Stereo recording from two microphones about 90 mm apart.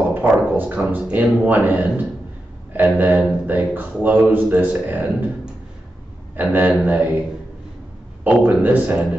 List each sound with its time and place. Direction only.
0.2 s speech: 15° right (ahead or behind)
8.2 s speech: 15° right (ahead or behind)